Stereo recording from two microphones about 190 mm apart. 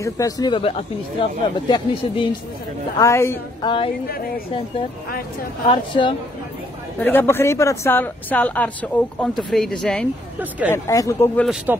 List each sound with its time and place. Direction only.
0.0 s speech: 20° left (ahead or behind)
3.0 s speech: 15° left (ahead or behind)
3.6 s speech: 30° left (ahead or behind)
5.7 s speech: 25° left (ahead or behind)
7.0 s speech: 10° left (ahead or behind)
10.7 s speech: 15° left (ahead or behind)